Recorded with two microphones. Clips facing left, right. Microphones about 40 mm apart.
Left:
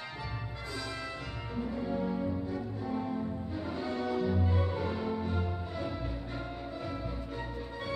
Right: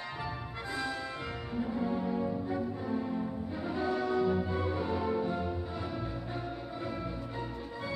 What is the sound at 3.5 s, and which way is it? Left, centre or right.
Music, right.